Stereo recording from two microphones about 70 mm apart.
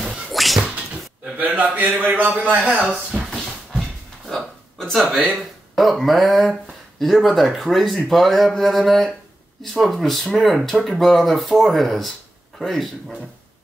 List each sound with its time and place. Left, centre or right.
0.3 s cat: centre
1.2 s a man's voice: right
2.7 s speech: centre
3.3 s a sound: centre
4.7 s speech: centre